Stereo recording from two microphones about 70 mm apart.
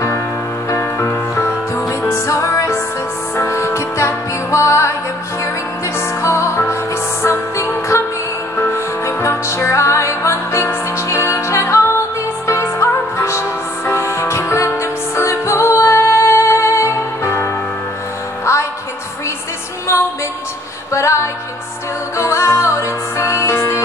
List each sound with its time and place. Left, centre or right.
0.7 s music: left
5.9 s music: left
8.7 s music: left
20.9 s music: left